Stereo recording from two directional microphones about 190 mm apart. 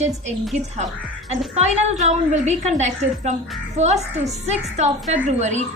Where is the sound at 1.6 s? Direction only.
35° right (ahead or behind).